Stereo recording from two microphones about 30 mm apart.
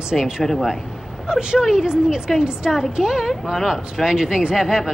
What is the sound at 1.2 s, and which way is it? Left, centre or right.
Speech, right.